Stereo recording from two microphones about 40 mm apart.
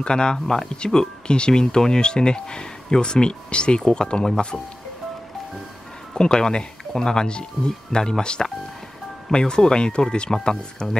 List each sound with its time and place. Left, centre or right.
0.0 s speech: left
6.1 s speech: centre